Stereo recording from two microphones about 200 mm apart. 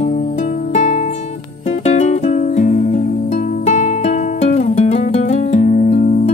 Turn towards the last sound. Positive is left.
turn(degrees=35)  # may be behind; listen again after turning